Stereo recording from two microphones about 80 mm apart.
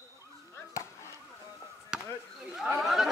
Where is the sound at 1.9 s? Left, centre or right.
Centre.